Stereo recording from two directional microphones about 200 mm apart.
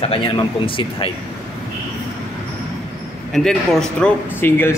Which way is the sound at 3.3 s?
5° left (ahead or behind).